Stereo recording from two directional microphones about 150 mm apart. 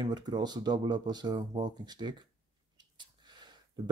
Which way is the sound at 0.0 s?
30° right (ahead or behind).